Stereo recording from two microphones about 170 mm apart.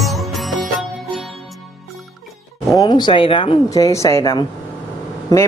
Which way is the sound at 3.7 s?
20° left (ahead or behind).